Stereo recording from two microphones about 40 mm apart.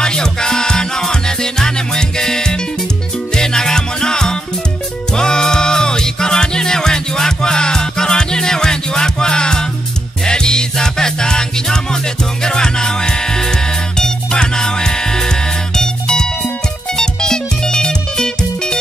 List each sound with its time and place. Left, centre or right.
0.0 s music: centre